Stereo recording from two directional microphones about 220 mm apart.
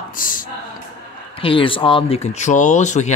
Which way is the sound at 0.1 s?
40° left (ahead or behind).